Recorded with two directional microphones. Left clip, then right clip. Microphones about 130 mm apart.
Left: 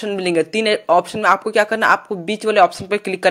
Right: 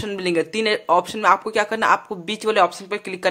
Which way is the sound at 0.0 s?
20° left (ahead or behind).